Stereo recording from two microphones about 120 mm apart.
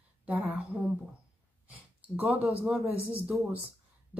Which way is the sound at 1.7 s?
15° right (ahead or behind).